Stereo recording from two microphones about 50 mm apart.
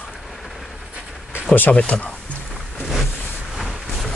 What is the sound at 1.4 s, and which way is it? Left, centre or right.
Speech, left.